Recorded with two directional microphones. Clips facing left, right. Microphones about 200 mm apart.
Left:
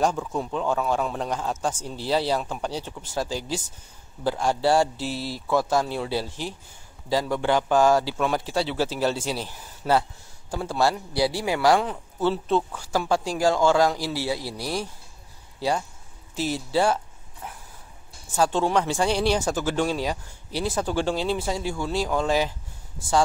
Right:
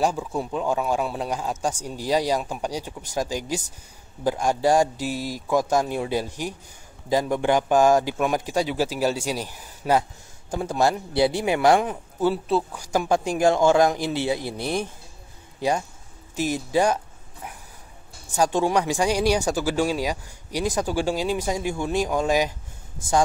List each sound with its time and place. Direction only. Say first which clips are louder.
0.0 s a man's voice: even; 10° right (ahead or behind)
16.3 s speech: right 2 dB; 15° right (ahead or behind)
18.3 s speech: right 1 dB; 15° right (ahead or behind)